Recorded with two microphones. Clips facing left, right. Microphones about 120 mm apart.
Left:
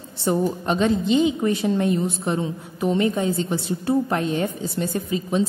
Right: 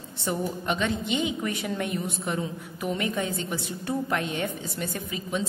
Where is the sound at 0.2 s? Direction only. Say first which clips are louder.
Left 7 dB; 35° left (ahead or behind).